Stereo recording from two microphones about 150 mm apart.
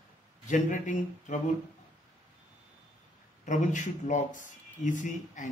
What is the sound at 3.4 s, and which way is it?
A man's voice, 55° left (ahead or behind).